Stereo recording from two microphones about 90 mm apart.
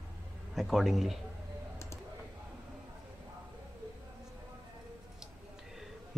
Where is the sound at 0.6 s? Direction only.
Centre (ahead or behind).